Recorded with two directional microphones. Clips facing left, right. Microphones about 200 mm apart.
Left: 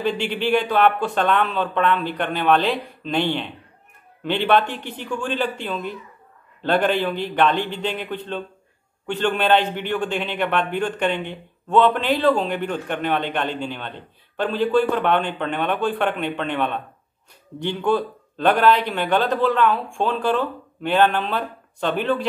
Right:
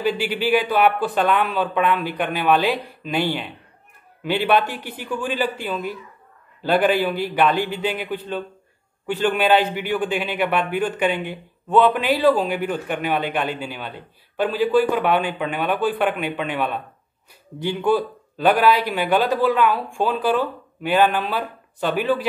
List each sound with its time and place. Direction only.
0.0 s a man's voice: 5° right (ahead or behind)